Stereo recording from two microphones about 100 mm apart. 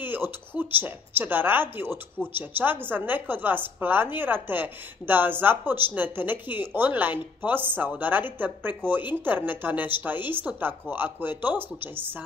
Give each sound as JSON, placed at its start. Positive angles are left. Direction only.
{"t": 0.0, "sound": "a woman's voice", "side_deg": -20}